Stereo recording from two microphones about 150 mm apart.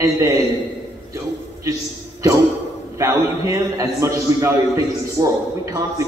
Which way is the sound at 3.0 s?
20° right (ahead or behind).